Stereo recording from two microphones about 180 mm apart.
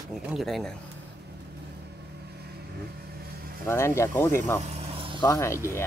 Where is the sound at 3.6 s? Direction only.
15° left (ahead or behind).